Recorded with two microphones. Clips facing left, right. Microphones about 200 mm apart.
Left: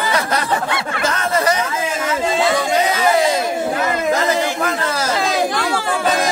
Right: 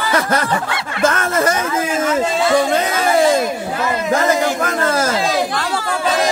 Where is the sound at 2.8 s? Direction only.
50° right (ahead or behind).